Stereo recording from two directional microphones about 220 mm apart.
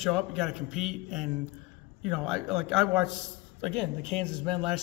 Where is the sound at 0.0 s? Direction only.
Centre (ahead or behind).